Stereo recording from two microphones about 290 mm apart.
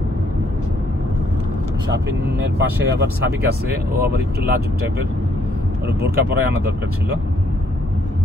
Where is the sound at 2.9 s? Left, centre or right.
Right.